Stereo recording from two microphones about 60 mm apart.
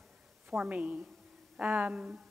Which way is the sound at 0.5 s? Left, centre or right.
Right.